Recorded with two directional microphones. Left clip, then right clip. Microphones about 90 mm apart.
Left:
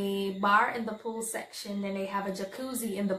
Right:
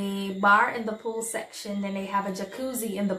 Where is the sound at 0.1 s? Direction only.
10° left (ahead or behind).